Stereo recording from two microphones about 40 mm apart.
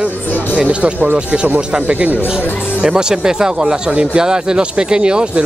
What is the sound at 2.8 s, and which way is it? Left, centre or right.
Speech, centre.